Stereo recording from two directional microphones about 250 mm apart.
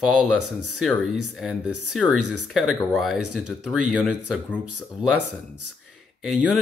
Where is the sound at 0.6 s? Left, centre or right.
Right.